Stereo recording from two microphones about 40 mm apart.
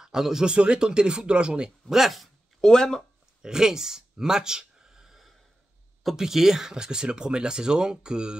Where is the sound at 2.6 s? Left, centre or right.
Centre.